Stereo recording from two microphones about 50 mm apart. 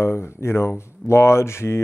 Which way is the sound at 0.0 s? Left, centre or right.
Left.